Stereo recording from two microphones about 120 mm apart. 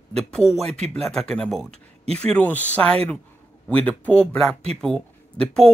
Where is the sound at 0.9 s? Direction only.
5° left (ahead or behind).